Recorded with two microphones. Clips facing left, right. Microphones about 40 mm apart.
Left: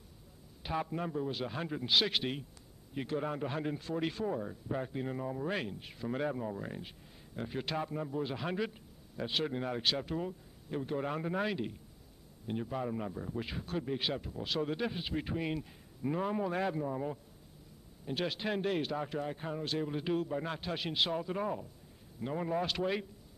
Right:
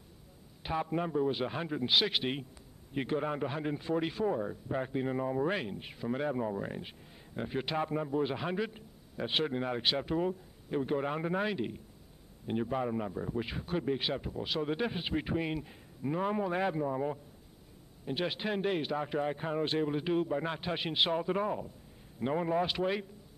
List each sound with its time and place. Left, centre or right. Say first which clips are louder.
0.6 s a sound: right 2 dB; centre
1.0 s a man's voice: right 5 dB; centre
2.9 s a man's voice: right 3 dB; right
8.5 s a man's voice: right 1 dB; centre
8.7 s a sound: right 1 dB; centre
9.5 s a man's voice: right 2 dB; centre
19.9 s a man's voice: right 3 dB; centre